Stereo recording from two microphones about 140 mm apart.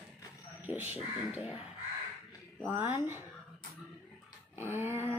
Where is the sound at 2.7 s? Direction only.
15° right (ahead or behind).